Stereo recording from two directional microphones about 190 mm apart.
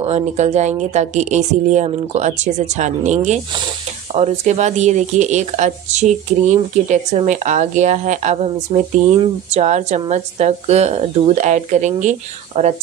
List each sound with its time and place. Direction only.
0.0 s speech: 35° right (ahead or behind)